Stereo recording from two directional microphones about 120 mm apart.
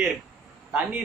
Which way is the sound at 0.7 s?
15° right (ahead or behind).